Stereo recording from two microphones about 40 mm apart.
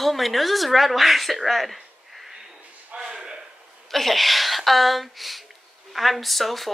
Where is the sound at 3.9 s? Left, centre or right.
Centre.